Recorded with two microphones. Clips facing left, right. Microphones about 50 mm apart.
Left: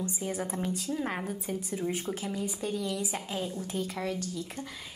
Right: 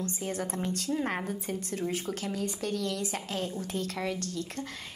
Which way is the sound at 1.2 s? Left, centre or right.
Centre.